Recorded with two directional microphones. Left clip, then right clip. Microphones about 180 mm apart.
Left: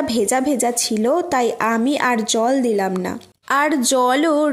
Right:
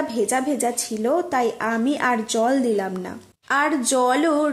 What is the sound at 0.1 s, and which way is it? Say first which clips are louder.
A woman's voice: left 4 dB; 30° left (ahead or behind).